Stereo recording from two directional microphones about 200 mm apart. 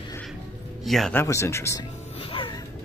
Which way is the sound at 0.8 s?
Centre (ahead or behind).